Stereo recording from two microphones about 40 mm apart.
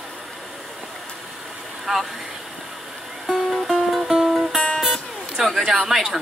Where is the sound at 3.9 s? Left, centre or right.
Centre.